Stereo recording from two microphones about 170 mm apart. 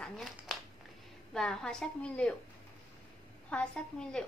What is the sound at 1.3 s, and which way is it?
A woman's voice, 5° left (ahead or behind).